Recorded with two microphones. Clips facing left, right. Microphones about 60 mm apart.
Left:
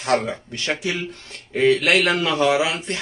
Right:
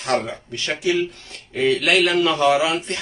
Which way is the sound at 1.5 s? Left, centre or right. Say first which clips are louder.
Left 1 dB; left.